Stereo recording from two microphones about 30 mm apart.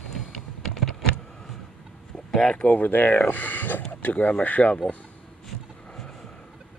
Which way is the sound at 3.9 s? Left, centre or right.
Left.